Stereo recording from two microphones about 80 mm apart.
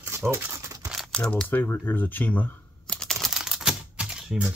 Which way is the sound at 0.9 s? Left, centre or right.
Centre.